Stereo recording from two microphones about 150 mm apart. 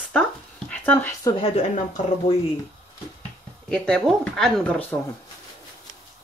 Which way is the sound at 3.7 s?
5° left (ahead or behind).